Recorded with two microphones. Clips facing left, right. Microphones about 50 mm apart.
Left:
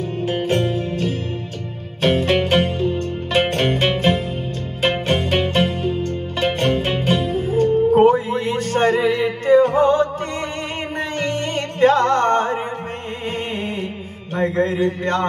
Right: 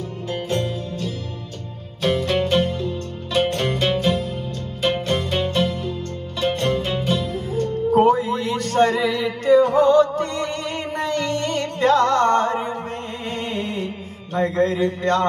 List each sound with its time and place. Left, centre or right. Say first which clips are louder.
0.3 s music: left 4 dB; left
7.9 s a sound: right 2 dB; left
11.0 s music: even; left
14.3 s mantra: even; left